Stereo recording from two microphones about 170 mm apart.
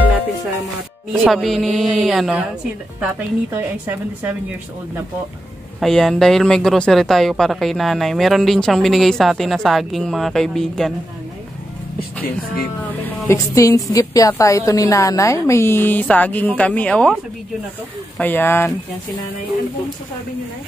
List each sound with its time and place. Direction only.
1.1 s a woman's voice: centre (ahead or behind)
5.8 s speech: 5° left (ahead or behind)
13.0 s a woman's voice: 15° left (ahead or behind)
18.1 s a woman's voice: 10° left (ahead or behind)